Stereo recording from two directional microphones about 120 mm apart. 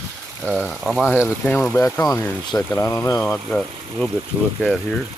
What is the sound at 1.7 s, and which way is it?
Speech, 20° left (ahead or behind).